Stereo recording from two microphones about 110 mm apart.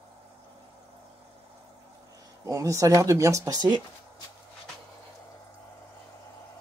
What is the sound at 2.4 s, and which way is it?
Speech, 30° right (ahead or behind).